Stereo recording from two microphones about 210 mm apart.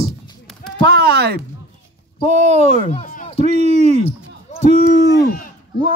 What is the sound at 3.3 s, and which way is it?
Speech, 30° right (ahead or behind).